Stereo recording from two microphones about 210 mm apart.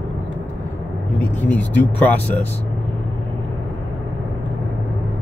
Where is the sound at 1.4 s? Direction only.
10° left (ahead or behind).